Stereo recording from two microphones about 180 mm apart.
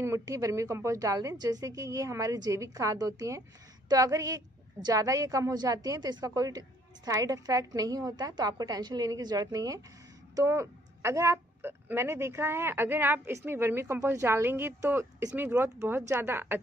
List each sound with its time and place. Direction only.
0.0 s a woman's voice: 15° right (ahead or behind)